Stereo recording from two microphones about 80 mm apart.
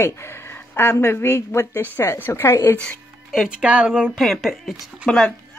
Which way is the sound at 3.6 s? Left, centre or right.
Centre.